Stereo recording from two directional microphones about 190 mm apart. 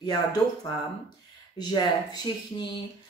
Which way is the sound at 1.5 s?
20° left (ahead or behind).